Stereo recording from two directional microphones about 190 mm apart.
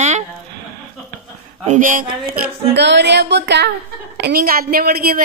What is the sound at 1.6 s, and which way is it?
A woman's voice, 40° right (ahead or behind).